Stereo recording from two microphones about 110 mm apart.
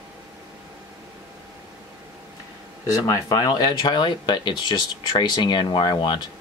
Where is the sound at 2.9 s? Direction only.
35° left (ahead or behind).